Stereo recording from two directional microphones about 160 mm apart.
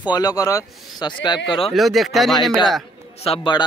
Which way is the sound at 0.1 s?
25° left (ahead or behind).